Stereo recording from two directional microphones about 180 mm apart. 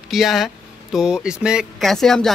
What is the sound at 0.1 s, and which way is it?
Speech, centre (ahead or behind).